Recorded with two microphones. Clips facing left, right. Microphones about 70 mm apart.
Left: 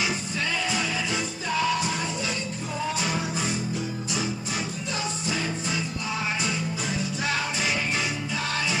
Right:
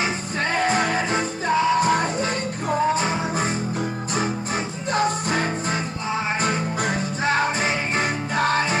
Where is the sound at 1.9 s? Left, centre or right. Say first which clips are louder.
Right 8 dB; right.